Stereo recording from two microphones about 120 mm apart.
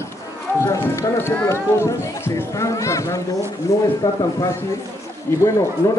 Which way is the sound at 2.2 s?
25° left (ahead or behind).